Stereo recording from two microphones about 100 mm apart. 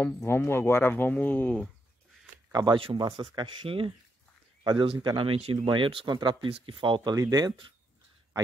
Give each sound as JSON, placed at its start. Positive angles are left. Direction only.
{"t": 0.0, "sound": "speech", "side_deg": 20}
{"t": 2.5, "sound": "speech", "side_deg": -40}
{"t": 7.2, "sound": "speech", "side_deg": -35}